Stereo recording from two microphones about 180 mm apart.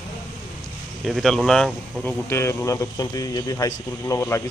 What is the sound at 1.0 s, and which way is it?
Speech, centre (ahead or behind).